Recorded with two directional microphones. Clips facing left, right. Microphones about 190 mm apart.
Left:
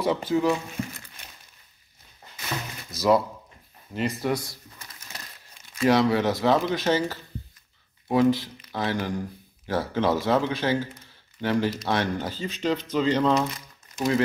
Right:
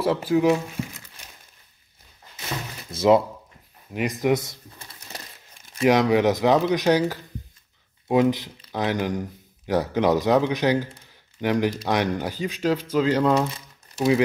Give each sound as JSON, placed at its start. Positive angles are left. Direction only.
{"t": 0.0, "sound": "speech", "side_deg": -5}
{"t": 0.8, "sound": "crumpling", "side_deg": -10}
{"t": 2.9, "sound": "a sound", "side_deg": -25}
{"t": 3.9, "sound": "speech", "side_deg": -15}